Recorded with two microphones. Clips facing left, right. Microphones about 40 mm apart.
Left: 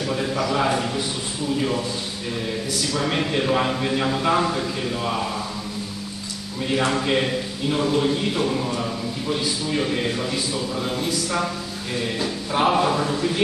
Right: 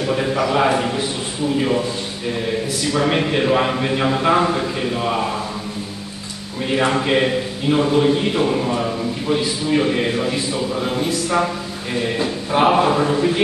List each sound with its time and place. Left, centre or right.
0.0 s a man's voice: right
6.7 s a man's voice: centre